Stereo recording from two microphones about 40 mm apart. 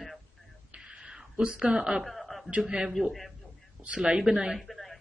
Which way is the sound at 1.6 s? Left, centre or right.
Centre.